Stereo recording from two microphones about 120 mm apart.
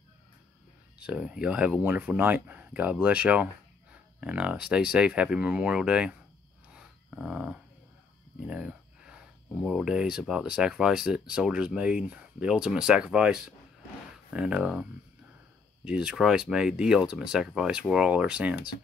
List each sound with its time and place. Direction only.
0.9 s speech: 10° right (ahead or behind)
6.7 s dog: 5° right (ahead or behind)
8.5 s speech: 5° right (ahead or behind)